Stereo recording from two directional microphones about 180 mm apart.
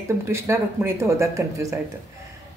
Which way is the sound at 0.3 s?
15° right (ahead or behind).